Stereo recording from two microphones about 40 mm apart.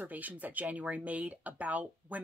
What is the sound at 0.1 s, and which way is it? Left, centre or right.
Speech, right.